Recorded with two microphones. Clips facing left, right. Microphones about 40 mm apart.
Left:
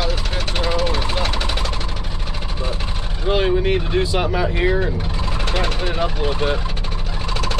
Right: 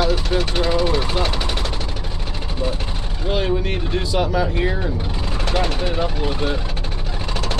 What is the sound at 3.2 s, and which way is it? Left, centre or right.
Speech, centre.